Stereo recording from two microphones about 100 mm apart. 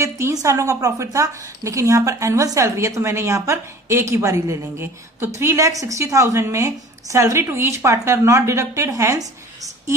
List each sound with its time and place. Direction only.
0.0 s a woman's voice: 35° right (ahead or behind)